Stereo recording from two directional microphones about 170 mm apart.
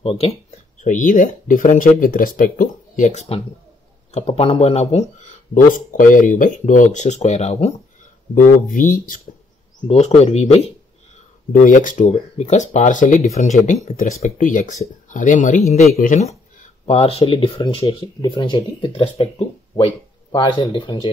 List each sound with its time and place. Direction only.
0.0 s speech: 35° left (ahead or behind)
8.4 s speech: 50° left (ahead or behind)
9.8 s speech: 40° left (ahead or behind)
11.5 s speech: 50° left (ahead or behind); by 21.1 s 30° left (ahead or behind)